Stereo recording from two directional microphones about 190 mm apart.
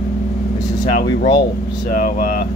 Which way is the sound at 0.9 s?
55° left (ahead or behind).